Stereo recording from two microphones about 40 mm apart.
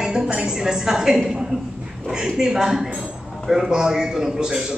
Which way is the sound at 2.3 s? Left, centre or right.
Centre.